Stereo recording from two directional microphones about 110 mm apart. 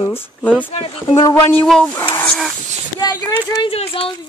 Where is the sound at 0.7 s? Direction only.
55° left (ahead or behind).